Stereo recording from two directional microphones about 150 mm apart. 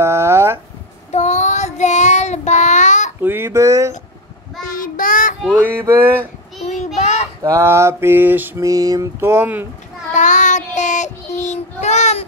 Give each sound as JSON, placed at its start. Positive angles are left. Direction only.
{"t": 0.0, "sound": "a sound", "side_deg": -15}
{"t": 1.1, "sound": "child singing", "side_deg": 50}
{"t": 3.2, "sound": "speech", "side_deg": -15}
{"t": 4.6, "sound": "child singing", "side_deg": 70}
{"t": 5.4, "sound": "mantra", "side_deg": -10}
{"t": 7.0, "sound": "a sound", "side_deg": 45}
{"t": 7.4, "sound": "mantra", "side_deg": -20}
{"t": 10.1, "sound": "child singing", "side_deg": 55}